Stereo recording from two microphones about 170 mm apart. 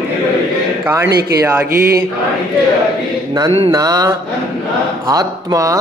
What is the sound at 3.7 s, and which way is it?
Speech, 20° right (ahead or behind).